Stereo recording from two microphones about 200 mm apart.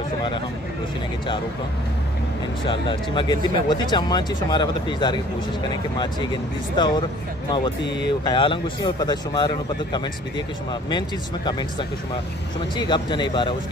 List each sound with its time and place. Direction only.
2.6 s speech: 25° left (ahead or behind)
6.8 s speech: 20° left (ahead or behind)
8.2 s speech: 25° left (ahead or behind)
12.7 s speech: 20° left (ahead or behind)